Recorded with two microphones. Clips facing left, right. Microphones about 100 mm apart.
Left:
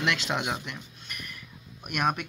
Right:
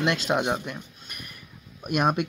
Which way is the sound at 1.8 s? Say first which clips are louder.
Right 5 dB; 25° right (ahead or behind).